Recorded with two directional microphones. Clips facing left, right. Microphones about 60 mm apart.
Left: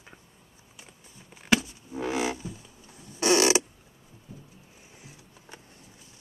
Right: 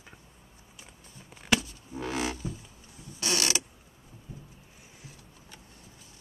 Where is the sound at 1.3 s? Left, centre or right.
Centre.